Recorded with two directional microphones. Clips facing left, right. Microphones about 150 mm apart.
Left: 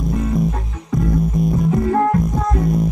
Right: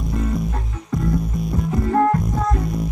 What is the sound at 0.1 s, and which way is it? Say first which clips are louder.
Music: left 4 dB; centre (ahead or behind).